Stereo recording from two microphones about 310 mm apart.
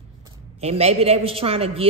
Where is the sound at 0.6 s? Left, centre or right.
Centre.